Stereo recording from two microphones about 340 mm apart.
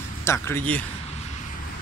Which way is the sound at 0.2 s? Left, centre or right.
Centre.